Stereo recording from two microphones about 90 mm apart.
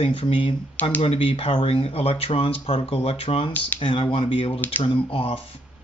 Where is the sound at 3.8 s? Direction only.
65° left (ahead or behind).